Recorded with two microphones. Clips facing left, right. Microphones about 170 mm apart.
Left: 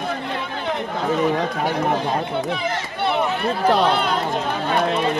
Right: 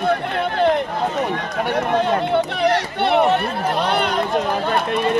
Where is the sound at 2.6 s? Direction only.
65° right (ahead or behind).